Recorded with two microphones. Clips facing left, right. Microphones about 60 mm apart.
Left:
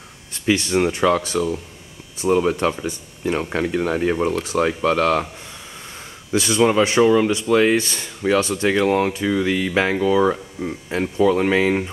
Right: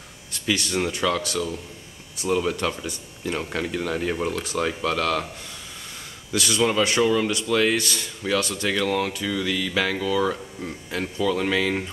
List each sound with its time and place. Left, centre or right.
0.3 s speech: left
6.3 s speech: left